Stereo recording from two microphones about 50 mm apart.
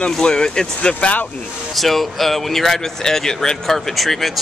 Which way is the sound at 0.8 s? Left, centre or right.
Left.